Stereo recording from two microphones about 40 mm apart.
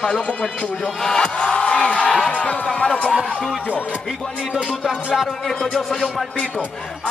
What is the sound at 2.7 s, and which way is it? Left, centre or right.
Speech, centre.